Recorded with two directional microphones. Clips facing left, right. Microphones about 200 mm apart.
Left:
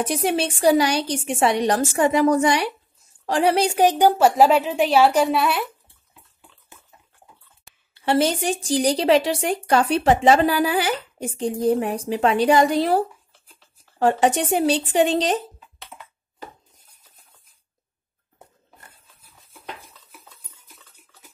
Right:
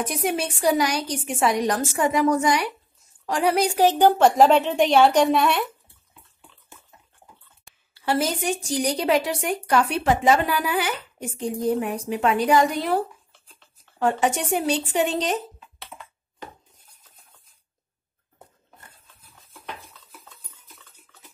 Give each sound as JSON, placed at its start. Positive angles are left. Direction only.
{"t": 0.0, "sound": "a woman's voice", "side_deg": 30}
{"t": 4.2, "sound": "a woman's voice", "side_deg": 5}
{"t": 7.9, "sound": "a woman's voice", "side_deg": 25}